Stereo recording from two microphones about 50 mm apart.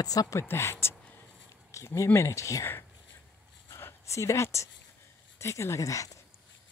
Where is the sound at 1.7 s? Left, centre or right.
Left.